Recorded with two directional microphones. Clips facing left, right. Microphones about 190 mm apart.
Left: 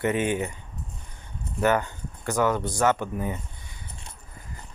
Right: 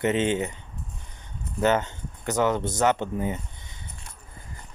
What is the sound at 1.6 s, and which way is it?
Speech, 20° right (ahead or behind).